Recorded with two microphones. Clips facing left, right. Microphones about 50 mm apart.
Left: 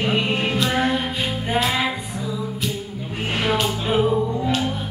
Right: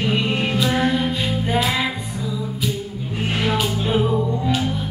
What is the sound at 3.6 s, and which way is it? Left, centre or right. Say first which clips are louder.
Music: even; centre.